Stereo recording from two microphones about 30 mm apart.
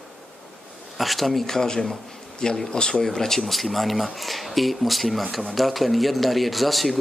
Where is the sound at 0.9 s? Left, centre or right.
Centre.